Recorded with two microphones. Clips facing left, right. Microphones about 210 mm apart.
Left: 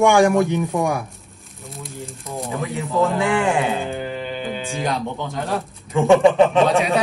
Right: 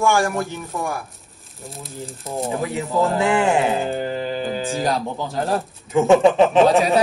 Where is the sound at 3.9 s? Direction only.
35° right (ahead or behind).